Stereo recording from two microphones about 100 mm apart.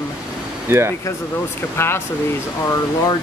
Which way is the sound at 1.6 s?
25° left (ahead or behind).